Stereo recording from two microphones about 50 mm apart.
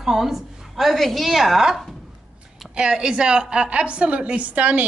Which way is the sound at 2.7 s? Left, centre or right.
Centre.